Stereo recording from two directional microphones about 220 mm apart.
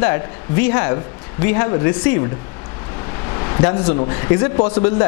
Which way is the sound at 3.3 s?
20° left (ahead or behind).